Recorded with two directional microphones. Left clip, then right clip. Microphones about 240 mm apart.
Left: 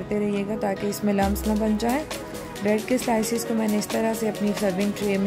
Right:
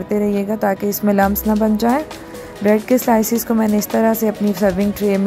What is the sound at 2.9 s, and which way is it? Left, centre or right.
Speech, centre.